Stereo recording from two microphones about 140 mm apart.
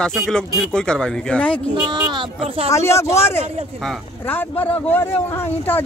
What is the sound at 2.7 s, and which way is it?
Speech, 20° left (ahead or behind).